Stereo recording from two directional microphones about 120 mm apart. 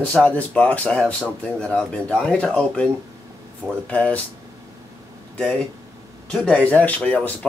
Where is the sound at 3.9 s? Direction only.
10° left (ahead or behind).